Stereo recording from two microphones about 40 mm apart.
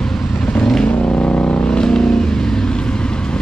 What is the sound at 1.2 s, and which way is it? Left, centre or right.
Vehicle, left.